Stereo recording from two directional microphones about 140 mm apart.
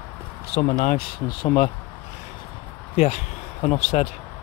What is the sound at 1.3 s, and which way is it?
Speech, 40° left (ahead or behind).